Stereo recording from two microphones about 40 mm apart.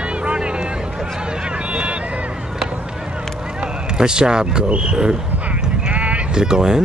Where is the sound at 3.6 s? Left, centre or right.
Right.